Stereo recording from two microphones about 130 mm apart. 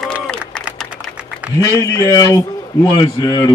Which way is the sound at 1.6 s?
20° left (ahead or behind).